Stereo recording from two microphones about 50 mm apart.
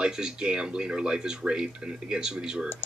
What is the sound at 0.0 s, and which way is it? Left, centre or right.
Speech, centre.